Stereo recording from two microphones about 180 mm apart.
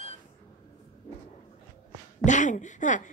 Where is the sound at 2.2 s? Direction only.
45° left (ahead or behind).